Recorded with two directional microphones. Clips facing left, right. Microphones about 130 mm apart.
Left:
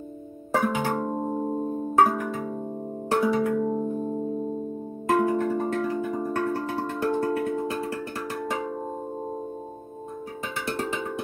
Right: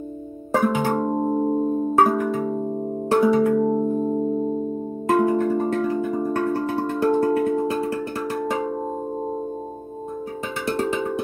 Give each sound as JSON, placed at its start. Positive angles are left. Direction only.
{"t": 0.6, "sound": "music", "side_deg": -30}
{"t": 5.0, "sound": "music", "side_deg": -25}
{"t": 8.5, "sound": "cowbell", "side_deg": -25}
{"t": 10.6, "sound": "cowbell", "side_deg": -25}